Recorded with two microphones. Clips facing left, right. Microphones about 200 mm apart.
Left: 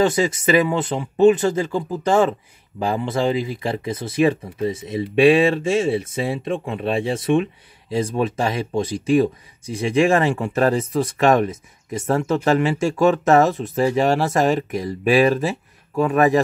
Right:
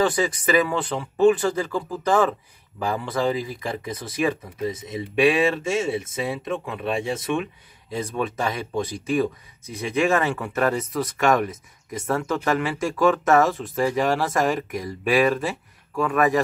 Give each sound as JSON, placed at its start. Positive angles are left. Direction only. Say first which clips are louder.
{"t": 0.0, "sound": "speech", "louder": "left 4 dB", "side_deg": 25}